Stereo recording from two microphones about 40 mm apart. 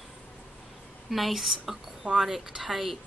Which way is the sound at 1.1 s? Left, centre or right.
Centre.